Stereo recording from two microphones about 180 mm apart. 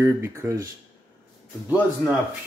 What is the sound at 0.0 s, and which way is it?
Speech, 15° right (ahead or behind).